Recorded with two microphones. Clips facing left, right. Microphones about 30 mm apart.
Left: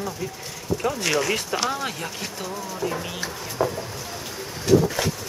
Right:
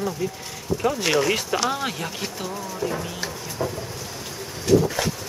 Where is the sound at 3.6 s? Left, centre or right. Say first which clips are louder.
Left 4 dB; centre.